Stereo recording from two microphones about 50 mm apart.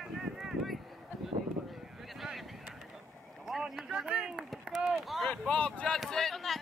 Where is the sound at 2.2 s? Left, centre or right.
Centre.